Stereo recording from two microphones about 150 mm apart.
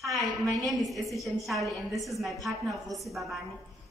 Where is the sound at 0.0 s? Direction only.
Centre (ahead or behind).